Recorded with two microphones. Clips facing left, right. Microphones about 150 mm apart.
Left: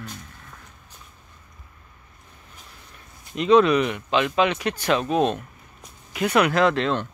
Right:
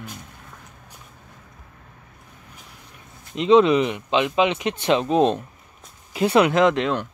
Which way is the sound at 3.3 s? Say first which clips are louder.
Right 1 dB; 20° right (ahead or behind).